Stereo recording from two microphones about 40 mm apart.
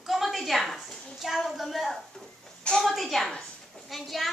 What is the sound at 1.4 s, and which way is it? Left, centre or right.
Speech, centre.